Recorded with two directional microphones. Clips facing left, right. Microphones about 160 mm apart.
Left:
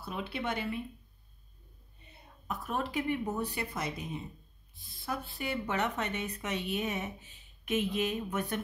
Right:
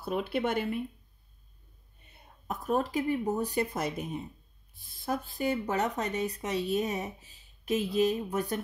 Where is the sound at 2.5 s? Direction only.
40° right (ahead or behind).